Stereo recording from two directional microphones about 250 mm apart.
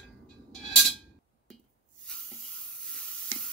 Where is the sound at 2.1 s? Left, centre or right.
Centre.